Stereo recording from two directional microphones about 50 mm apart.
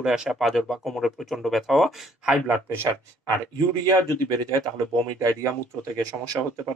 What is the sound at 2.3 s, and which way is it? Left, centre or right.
Speech, right.